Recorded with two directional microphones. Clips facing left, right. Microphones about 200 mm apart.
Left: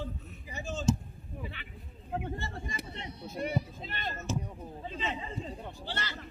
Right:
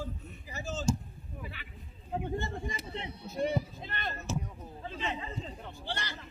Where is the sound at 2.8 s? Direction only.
60° left (ahead or behind).